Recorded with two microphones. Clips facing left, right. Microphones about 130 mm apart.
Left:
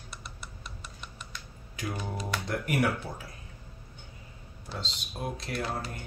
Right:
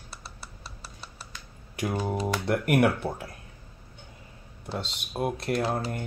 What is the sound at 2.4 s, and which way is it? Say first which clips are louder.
Speech: right 6 dB; 65° right (ahead or behind).